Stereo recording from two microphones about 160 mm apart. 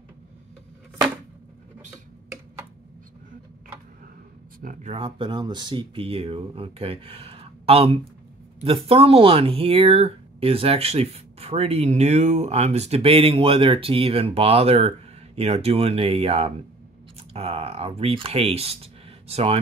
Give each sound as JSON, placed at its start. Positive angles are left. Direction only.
{"t": 4.8, "sound": "speech", "side_deg": -35}